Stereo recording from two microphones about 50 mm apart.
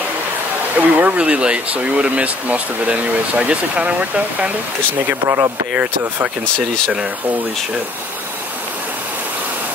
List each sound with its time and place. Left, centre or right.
0.7 s speech: right
5.2 s speech: right